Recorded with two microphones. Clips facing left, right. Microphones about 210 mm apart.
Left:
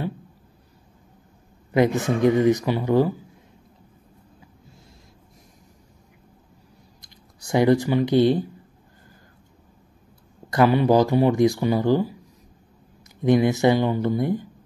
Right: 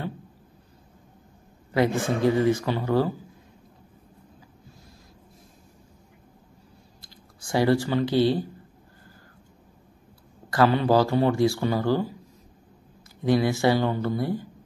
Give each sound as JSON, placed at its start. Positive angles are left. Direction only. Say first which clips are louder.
{"t": 1.7, "sound": "speech", "louder": "left 3 dB", "side_deg": 20}
{"t": 7.0, "sound": "computer keyboard", "louder": "right 1 dB", "side_deg": 20}
{"t": 10.5, "sound": "speech", "louder": "left 3 dB", "side_deg": 15}
{"t": 13.2, "sound": "speech", "louder": "left 4 dB", "side_deg": 20}